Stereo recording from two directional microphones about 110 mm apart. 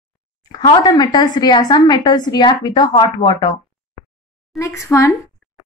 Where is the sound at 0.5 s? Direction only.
40° left (ahead or behind).